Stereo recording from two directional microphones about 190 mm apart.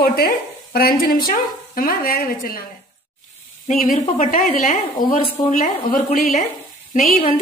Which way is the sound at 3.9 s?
45° left (ahead or behind).